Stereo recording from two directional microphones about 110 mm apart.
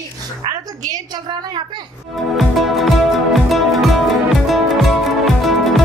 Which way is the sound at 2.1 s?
Centre (ahead or behind).